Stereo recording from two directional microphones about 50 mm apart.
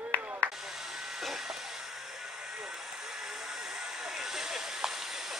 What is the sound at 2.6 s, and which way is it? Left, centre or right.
Vehicle, centre.